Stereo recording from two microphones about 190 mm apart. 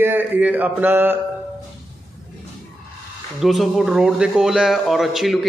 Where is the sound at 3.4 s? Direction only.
Centre (ahead or behind).